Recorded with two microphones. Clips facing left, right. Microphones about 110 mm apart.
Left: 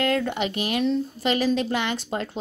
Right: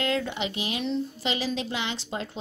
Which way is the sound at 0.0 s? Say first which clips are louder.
Left 4 dB; 50° left (ahead or behind).